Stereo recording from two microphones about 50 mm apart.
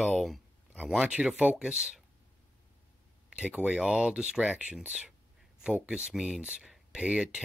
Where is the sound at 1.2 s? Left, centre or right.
Right.